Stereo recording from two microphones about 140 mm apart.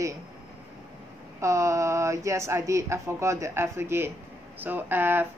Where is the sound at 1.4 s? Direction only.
20° right (ahead or behind).